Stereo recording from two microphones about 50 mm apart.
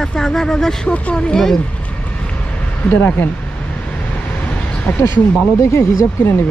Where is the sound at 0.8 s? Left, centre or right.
Left.